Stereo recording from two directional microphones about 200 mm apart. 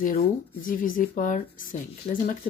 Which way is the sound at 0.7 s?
45° left (ahead or behind).